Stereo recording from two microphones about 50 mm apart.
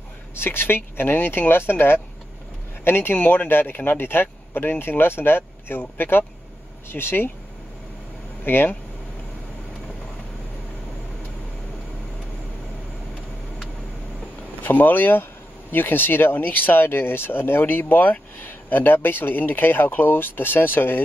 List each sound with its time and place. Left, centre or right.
0.4 s a man's voice: left
8.5 s a man's voice: left
14.6 s a man's voice: left